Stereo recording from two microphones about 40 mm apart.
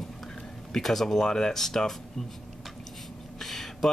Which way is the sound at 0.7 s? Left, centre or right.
Centre.